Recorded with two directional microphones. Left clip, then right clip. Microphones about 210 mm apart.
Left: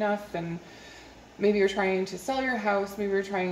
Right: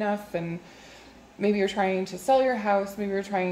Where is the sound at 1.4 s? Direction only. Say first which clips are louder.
Left 1 dB; 40° right (ahead or behind).